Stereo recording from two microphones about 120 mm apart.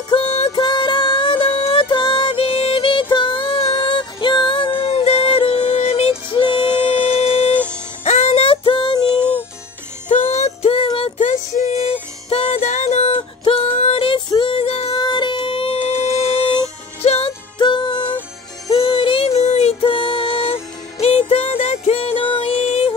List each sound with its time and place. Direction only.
0.1 s music: 55° left (ahead or behind)
0.5 s music: 40° left (ahead or behind)
4.0 s music: 40° left (ahead or behind)
6.9 s civil defense siren: 55° left (ahead or behind)
8.0 s music: 70° left (ahead or behind); by 9.0 s 45° left (ahead or behind)
10.0 s music: 70° left (ahead or behind)
11.1 s music: 75° left (ahead or behind)
13.4 s music: 55° left (ahead or behind)
17.6 s music: 40° left (ahead or behind); by 19.7 s 65° left (ahead or behind)
19.8 s music: 45° left (ahead or behind)
22.6 s music: 60° left (ahead or behind)